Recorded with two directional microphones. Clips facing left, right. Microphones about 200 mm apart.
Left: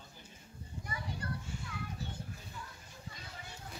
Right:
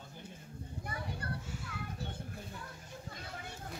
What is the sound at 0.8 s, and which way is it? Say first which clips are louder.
Children playing: even; 55° right (ahead or behind).